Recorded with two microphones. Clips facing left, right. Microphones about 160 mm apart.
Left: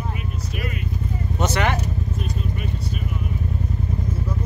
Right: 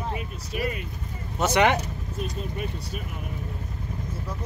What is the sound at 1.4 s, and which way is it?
Speech, 15° right (ahead or behind).